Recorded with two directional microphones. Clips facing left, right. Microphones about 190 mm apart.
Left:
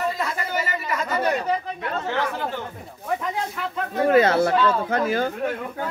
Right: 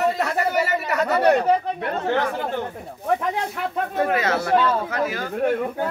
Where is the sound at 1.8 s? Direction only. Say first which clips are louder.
Right 3 dB; 55° right (ahead or behind).